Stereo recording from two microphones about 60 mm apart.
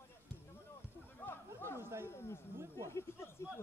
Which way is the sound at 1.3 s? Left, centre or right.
Left.